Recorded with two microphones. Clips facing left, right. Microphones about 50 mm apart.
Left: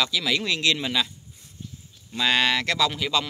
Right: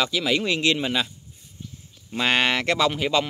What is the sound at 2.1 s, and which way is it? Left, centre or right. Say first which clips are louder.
Speech: right 1 dB; right.